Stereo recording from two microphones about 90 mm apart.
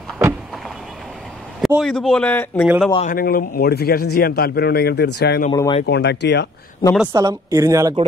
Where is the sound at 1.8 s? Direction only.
5° left (ahead or behind).